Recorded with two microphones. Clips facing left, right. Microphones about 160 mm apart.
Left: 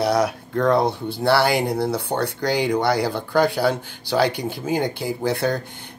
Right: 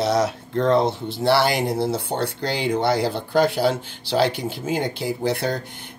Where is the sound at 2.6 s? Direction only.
25° right (ahead or behind).